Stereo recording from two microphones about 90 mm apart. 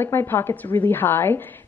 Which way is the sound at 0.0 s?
25° left (ahead or behind).